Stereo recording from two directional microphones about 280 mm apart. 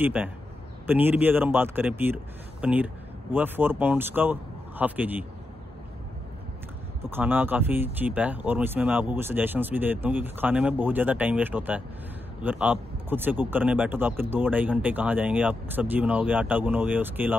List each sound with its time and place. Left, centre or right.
0.0 s speech: centre
7.1 s speech: centre